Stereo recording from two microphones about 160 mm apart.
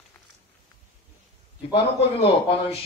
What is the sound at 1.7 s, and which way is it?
Speech, 35° left (ahead or behind).